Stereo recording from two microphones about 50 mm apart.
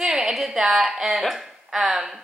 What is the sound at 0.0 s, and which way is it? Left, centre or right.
A woman's voice, centre.